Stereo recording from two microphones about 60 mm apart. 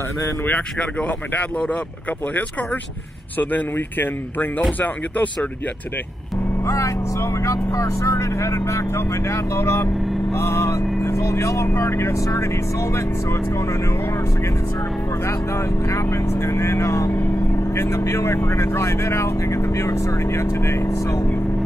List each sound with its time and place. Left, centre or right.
0.5 s speech: left
3.3 s speech: left
6.6 s speech: left
7.5 s speech: left
15.2 s speech: left